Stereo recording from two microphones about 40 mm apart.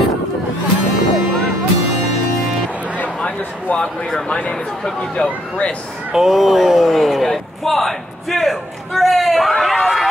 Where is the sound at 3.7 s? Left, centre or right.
Left.